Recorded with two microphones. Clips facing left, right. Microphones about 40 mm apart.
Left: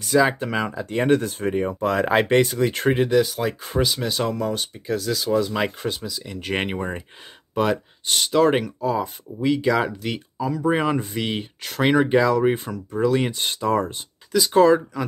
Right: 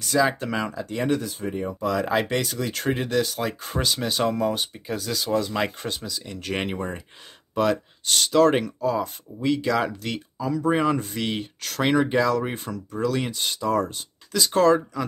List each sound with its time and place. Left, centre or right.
0.0 s speech: centre
0.8 s speech: left
1.8 s speech: left
3.0 s speech: centre
6.4 s speech: centre
12.9 s speech: left
13.4 s speech: left
14.3 s speech: centre